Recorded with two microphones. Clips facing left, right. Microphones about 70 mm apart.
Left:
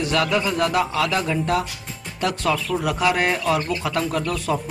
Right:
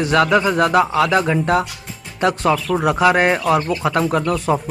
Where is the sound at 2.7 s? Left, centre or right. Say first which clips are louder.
Right 8 dB; right.